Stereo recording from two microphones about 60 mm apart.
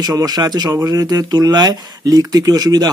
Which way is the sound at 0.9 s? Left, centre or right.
Right.